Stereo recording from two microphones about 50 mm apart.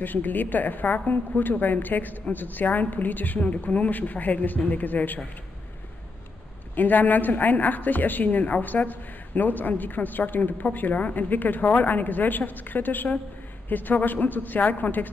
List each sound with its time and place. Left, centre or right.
0.0 s a woman's voice: left
6.7 s a woman's voice: left